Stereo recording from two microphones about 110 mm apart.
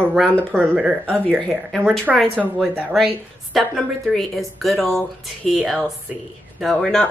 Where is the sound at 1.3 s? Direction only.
5° left (ahead or behind).